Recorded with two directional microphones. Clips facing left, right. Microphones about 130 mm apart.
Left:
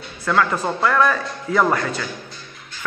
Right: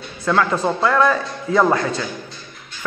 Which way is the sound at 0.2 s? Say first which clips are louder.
Right 2 dB; 25° right (ahead or behind).